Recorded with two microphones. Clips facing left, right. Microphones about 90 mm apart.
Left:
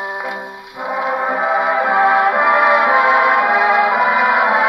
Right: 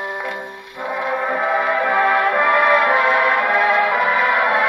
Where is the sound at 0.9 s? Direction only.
15° left (ahead or behind).